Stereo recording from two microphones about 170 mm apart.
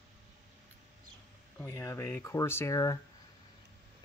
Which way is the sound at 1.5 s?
15° left (ahead or behind).